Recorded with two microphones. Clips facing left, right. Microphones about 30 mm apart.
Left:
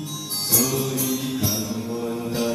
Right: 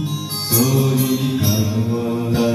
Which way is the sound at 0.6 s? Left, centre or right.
Centre.